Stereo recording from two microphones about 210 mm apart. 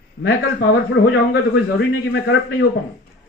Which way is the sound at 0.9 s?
50° left (ahead or behind).